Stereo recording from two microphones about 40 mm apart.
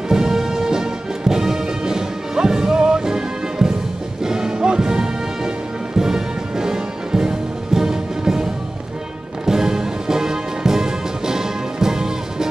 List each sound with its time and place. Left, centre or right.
0.1 s music: centre
9.5 s music: centre